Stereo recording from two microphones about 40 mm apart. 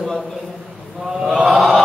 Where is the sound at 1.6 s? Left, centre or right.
Centre.